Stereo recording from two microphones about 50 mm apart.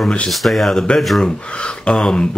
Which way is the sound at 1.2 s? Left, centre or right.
Left.